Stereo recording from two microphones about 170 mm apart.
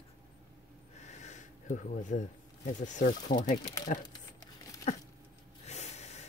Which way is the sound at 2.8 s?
50° left (ahead or behind).